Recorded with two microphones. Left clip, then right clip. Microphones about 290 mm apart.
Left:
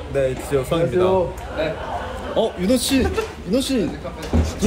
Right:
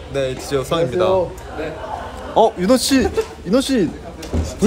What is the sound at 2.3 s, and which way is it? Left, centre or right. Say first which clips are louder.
Speech: right 6 dB; centre.